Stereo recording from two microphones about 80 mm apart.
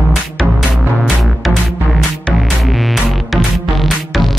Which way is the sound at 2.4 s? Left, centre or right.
Centre.